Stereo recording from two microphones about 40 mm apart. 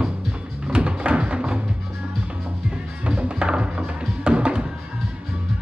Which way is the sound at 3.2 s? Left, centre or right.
Right.